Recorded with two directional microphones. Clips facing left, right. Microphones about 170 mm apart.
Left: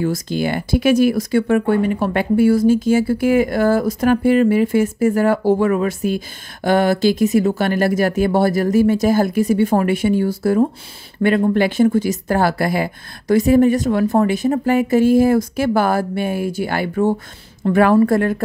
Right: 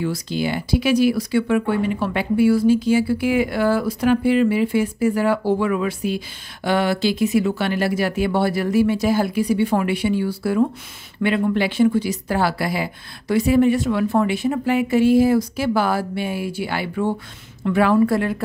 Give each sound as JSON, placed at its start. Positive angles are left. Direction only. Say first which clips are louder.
{"t": 0.0, "sound": "speech", "louder": "left 3 dB", "side_deg": 45}